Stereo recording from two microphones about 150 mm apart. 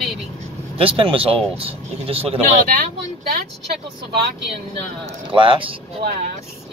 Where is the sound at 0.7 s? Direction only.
35° right (ahead or behind).